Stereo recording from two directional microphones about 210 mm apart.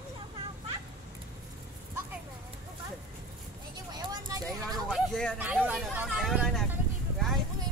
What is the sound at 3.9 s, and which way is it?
Vehicle, 20° right (ahead or behind).